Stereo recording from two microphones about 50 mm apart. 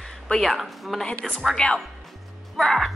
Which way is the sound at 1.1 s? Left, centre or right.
Left.